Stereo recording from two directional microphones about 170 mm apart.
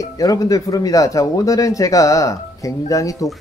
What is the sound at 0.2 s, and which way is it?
Speech, 20° left (ahead or behind).